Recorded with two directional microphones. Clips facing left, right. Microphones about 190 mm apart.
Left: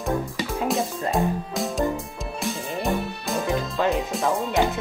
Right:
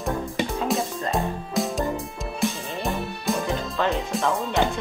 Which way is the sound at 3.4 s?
15° left (ahead or behind).